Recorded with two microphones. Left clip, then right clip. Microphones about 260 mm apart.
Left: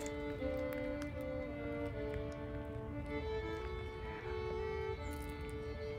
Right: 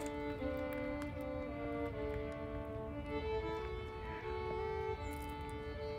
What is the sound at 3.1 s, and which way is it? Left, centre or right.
Music, centre.